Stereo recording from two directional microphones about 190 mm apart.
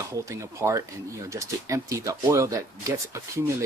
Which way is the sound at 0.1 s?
15° right (ahead or behind).